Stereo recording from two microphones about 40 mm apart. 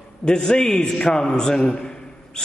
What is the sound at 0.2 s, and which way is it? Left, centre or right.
A man's voice, centre.